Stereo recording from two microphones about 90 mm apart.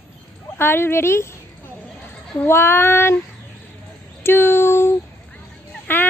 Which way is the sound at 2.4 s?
25° left (ahead or behind).